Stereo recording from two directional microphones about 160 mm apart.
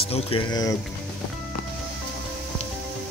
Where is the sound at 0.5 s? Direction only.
20° left (ahead or behind).